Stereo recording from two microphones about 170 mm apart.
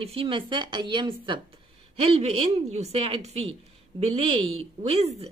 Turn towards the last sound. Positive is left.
turn(degrees=-35)  # may be behind; listen again after turning